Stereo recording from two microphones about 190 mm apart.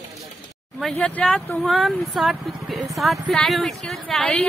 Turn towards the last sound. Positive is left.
turn(degrees=5)  # may be behind; listen again after turning